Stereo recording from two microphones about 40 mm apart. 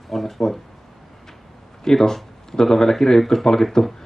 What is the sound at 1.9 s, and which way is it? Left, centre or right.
Speech, centre.